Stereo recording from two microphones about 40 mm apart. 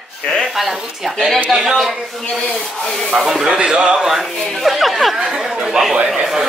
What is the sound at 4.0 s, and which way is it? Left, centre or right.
A man's voice, centre.